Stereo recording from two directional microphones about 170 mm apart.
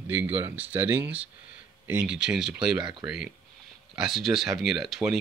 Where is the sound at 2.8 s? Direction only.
25° right (ahead or behind).